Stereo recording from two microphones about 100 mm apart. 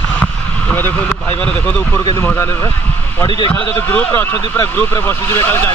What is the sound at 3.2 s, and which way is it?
Speech, 55° left (ahead or behind).